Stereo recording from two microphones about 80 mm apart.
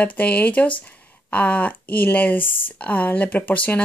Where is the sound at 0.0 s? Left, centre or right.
Centre.